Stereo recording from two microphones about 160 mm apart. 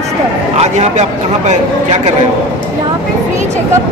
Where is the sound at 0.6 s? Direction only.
45° right (ahead or behind).